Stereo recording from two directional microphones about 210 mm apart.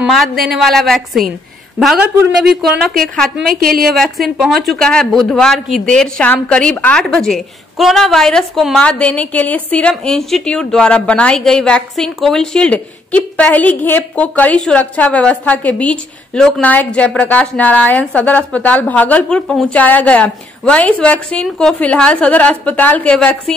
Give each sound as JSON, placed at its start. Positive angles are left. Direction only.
{"t": 0.0, "sound": "speech", "side_deg": 0}
{"t": 3.6, "sound": "a woman's voice", "side_deg": -45}
{"t": 3.9, "sound": "speech", "side_deg": 0}